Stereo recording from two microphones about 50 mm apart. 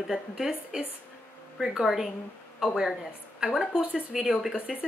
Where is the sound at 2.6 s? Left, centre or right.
Centre.